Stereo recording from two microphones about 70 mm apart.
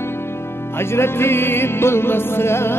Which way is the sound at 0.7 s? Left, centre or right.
Left.